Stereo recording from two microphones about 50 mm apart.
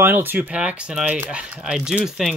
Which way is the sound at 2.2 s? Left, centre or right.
Centre.